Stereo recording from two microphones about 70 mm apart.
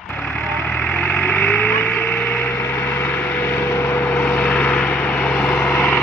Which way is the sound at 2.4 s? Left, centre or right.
Left.